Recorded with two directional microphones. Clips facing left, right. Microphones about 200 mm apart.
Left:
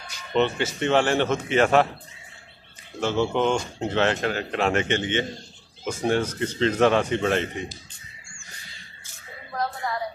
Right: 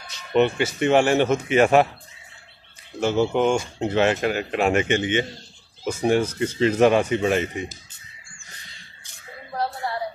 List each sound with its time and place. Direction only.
0.0 s speech: 10° right (ahead or behind)
3.0 s speech: 10° right (ahead or behind)
9.8 s a sound: 30° right (ahead or behind)